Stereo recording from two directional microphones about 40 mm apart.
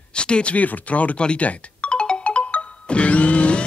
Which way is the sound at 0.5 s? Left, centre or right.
Left.